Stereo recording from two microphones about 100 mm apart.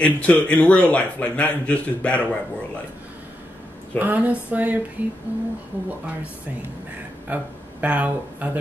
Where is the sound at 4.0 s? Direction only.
15° right (ahead or behind).